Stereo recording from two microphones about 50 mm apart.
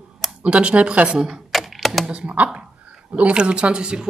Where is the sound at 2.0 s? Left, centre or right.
Right.